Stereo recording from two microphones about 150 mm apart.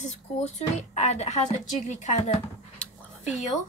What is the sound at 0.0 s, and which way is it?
Speech, 50° left (ahead or behind).